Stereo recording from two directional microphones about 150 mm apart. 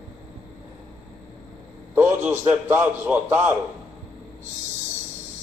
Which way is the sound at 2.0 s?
15° right (ahead or behind).